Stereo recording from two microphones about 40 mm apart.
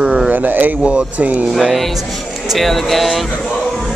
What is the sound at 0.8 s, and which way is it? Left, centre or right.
Speech, right.